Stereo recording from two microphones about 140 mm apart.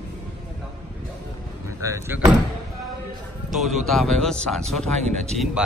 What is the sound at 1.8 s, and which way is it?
Speech, 20° right (ahead or behind).